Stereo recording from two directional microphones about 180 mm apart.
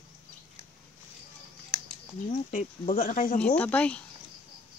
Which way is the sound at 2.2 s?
40° left (ahead or behind).